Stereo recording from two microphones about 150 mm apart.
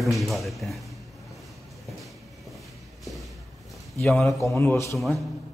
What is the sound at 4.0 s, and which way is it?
Speech, centre (ahead or behind).